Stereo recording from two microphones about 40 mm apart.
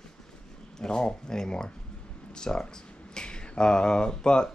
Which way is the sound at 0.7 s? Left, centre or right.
Centre.